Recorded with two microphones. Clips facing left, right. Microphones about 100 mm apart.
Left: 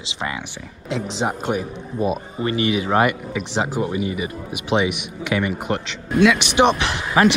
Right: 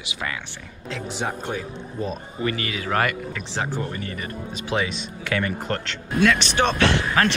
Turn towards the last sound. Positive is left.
turn(degrees=20)  # may be behind; listen again after turning